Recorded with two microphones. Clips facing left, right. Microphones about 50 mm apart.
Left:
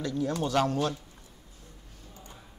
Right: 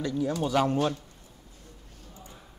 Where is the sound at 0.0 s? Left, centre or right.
Centre.